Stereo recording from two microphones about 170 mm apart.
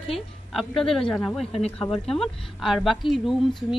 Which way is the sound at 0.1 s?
Centre (ahead or behind).